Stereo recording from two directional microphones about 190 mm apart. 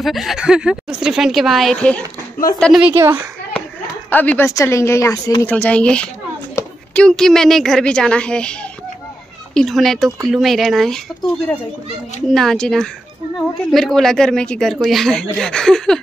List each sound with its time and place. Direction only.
0.0 s a woman's voice: centre (ahead or behind)
2.9 s a child's voice: 15° right (ahead or behind)
4.1 s a woman's voice: 10° left (ahead or behind)
6.6 s a sound: 15° left (ahead or behind)
6.9 s a woman's voice: 5° left (ahead or behind)
12.3 s a woman's voice: centre (ahead or behind)